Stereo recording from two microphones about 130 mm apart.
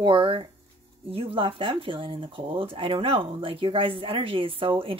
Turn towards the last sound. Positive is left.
turn(degrees=-45)  # may be behind; listen again after turning